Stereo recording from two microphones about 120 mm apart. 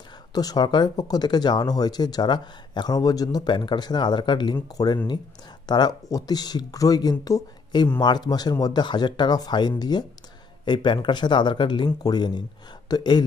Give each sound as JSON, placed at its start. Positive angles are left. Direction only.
{"t": 0.3, "sound": "speech", "side_deg": 35}